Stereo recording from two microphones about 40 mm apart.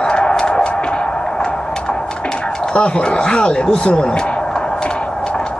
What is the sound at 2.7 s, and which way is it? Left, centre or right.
Speech, left.